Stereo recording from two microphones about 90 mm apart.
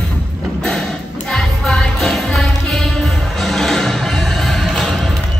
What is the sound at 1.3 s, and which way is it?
Music, 5° left (ahead or behind).